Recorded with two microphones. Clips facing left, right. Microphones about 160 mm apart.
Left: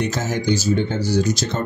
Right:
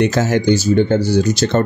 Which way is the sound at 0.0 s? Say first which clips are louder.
Right 7 dB; 75° right (ahead or behind).